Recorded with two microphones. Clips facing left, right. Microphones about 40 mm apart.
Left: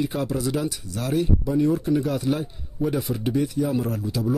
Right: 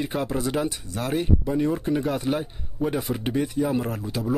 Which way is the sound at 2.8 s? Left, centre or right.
Right.